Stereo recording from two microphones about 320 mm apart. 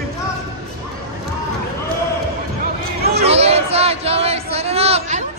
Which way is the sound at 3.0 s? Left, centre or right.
Right.